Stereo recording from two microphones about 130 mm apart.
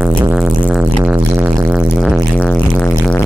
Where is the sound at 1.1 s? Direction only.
20° right (ahead or behind).